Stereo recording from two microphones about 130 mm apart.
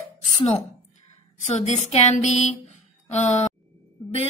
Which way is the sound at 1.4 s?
60° left (ahead or behind).